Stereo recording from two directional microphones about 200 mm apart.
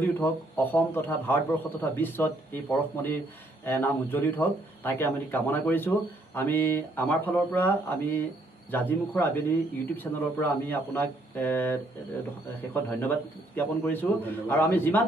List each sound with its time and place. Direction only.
0.0 s speech: 10° left (ahead or behind)